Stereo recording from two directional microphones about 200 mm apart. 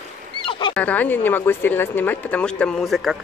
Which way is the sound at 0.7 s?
5° left (ahead or behind).